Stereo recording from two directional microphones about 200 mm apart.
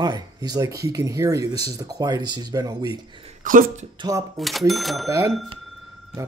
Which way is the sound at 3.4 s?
40° right (ahead or behind).